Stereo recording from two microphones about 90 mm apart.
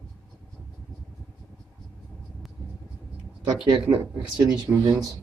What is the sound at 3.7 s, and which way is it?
Speech, 70° right (ahead or behind).